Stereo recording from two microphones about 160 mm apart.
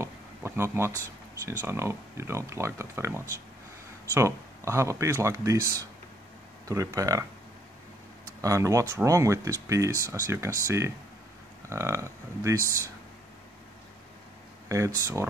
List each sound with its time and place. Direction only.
0.0 s a sound: 15° right (ahead or behind)
1.4 s speech: 15° right (ahead or behind)
8.4 s speech: 20° right (ahead or behind)
14.7 s speech: 20° right (ahead or behind)